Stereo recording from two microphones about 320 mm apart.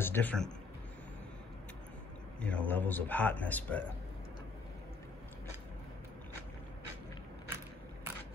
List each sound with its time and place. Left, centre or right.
0.0 s speech: centre
2.4 s speech: centre